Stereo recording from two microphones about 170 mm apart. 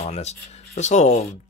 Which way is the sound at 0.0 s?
40° left (ahead or behind).